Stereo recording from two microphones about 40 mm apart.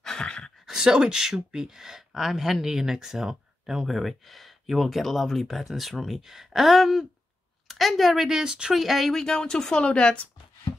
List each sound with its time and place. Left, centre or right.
0.0 s a sound: centre
0.7 s a woman's voice: centre
8.5 s speech: right
8.7 s speech: centre
9.2 s speech: centre